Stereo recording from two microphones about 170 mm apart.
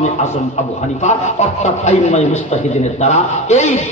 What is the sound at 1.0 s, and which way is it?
A man's voice, 40° left (ahead or behind).